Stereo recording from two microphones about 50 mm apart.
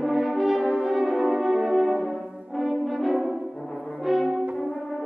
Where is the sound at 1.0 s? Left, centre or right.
Centre.